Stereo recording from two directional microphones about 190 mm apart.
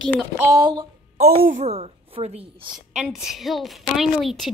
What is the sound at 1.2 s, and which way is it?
Speech, 50° right (ahead or behind).